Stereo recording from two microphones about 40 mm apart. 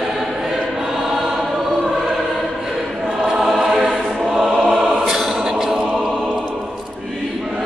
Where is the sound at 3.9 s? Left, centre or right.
Centre.